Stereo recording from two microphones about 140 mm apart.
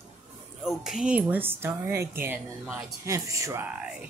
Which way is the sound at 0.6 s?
5° right (ahead or behind).